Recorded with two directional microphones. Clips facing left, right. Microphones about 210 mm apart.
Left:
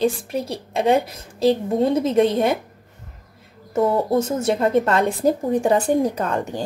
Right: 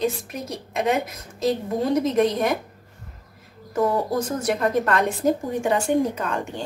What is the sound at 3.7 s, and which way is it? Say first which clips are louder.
A woman's voice: left 3 dB; 25° left (ahead or behind).